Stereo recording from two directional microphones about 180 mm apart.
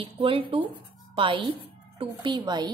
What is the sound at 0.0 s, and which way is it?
A woman's voice, 30° right (ahead or behind).